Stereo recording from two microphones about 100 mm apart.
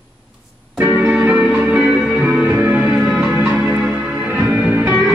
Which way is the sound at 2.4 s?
15° right (ahead or behind).